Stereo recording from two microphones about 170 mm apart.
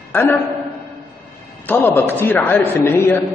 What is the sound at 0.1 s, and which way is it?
Speech, 10° left (ahead or behind).